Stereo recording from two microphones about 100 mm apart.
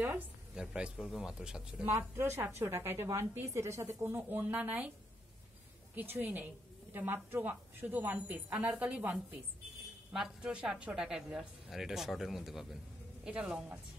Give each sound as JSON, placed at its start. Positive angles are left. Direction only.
{"t": 0.6, "sound": "a woman's voice", "side_deg": -10}
{"t": 2.0, "sound": "speech", "side_deg": -25}
{"t": 4.4, "sound": "a woman's voice", "side_deg": -15}
{"t": 5.9, "sound": "a woman's voice", "side_deg": -20}